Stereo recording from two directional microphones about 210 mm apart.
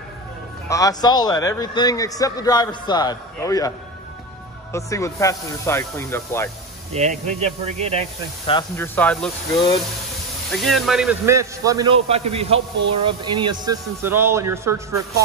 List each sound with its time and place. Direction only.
0.7 s a man's voice: 15° left (ahead or behind)
4.7 s a man's voice: 15° left (ahead or behind)
6.9 s speech: 30° right (ahead or behind)
8.7 s a man's voice: 10° left (ahead or behind)
9.5 s speech: 20° left (ahead or behind)
10.5 s speech: centre (ahead or behind)
11.2 s a man's voice: 15° right (ahead or behind)
12.1 s speech: 30° right (ahead or behind)
14.0 s a man's voice: 10° right (ahead or behind)